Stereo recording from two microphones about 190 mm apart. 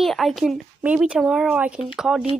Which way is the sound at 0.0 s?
Centre (ahead or behind).